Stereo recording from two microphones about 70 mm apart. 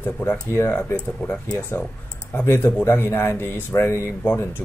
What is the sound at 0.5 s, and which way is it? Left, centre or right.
Speech, left.